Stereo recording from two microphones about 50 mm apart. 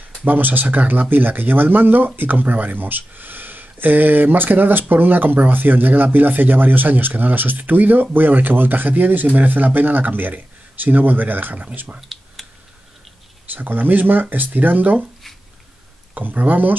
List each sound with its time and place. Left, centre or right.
0.2 s speech: right
12.0 s computer keyboard: centre
13.5 s speech: right
16.2 s speech: right